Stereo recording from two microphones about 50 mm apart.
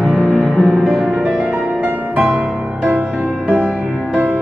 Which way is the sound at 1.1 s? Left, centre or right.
Right.